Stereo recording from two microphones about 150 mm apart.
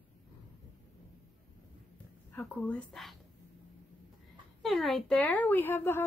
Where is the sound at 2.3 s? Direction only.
10° left (ahead or behind).